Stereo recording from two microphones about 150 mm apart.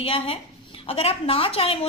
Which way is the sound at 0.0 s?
40° left (ahead or behind).